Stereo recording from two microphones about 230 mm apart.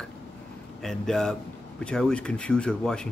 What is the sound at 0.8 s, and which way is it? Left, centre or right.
Speech, centre.